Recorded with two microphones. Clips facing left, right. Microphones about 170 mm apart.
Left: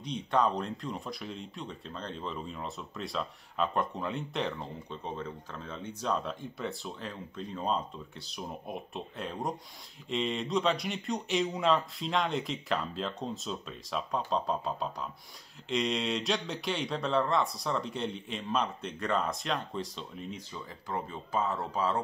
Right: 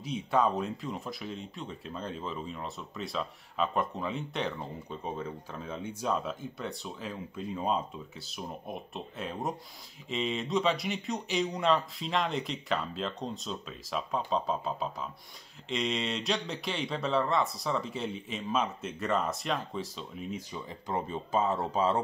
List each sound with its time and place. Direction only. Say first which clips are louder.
0.0 s speech: right 1 dB; 5° right (ahead or behind)
20.9 s speech: right 3 dB; 20° right (ahead or behind)